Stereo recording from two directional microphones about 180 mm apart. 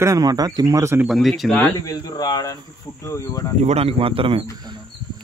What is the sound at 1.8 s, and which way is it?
Speech, 20° left (ahead or behind).